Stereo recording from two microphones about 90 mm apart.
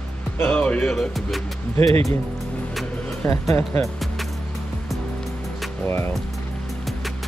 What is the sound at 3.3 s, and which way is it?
Speech, 35° left (ahead or behind).